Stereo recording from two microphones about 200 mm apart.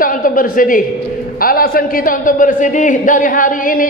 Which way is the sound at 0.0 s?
45° left (ahead or behind).